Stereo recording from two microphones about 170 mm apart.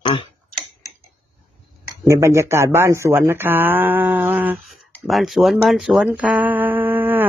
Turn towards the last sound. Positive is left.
turn(degrees=-10)  # may be behind; listen again after turning